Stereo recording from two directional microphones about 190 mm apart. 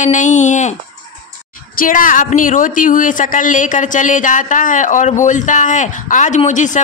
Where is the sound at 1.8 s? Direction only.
45° left (ahead or behind).